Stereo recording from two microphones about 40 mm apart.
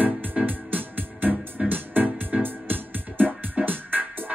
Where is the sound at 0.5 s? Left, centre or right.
Right.